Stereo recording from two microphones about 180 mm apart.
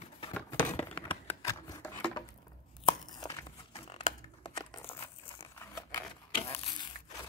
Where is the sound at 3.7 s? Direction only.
35° left (ahead or behind).